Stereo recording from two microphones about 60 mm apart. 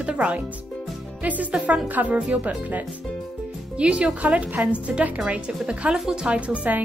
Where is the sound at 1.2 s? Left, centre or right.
Right; by 6.3 s centre.